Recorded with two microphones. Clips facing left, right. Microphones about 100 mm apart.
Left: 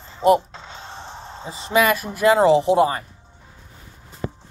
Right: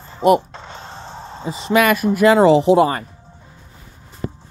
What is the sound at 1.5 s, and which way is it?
Speech, 80° right.